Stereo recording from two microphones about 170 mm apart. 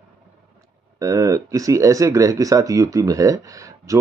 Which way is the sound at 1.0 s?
20° right (ahead or behind).